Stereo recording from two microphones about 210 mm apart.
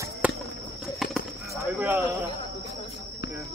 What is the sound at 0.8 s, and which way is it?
Bird, centre (ahead or behind).